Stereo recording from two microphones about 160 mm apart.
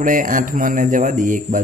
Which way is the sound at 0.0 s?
55° right (ahead or behind).